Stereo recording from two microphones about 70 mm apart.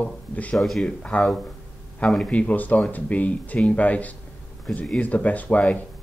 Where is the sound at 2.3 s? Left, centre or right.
Centre.